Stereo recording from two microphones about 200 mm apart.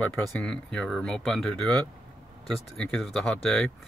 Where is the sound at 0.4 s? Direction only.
5° left (ahead or behind).